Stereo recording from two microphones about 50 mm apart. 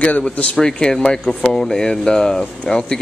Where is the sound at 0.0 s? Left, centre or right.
Left.